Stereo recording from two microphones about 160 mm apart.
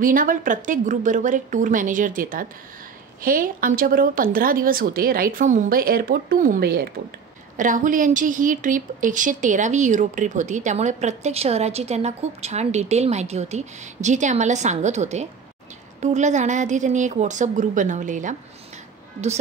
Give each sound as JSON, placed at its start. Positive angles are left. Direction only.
{"t": 0.0, "sound": "speech", "side_deg": -60}
{"t": 7.5, "sound": "a woman's voice", "side_deg": -55}